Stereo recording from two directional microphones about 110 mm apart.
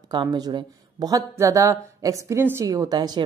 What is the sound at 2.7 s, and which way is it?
Speech, 35° right (ahead or behind).